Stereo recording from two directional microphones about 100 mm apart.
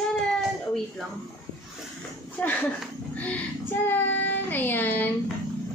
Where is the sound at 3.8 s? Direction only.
20° left (ahead or behind).